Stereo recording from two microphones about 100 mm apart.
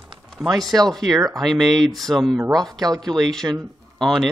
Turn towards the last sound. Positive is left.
turn(degrees=5)  # may be behind; listen again after turning